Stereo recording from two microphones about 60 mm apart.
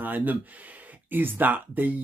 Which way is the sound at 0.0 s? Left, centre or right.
Right.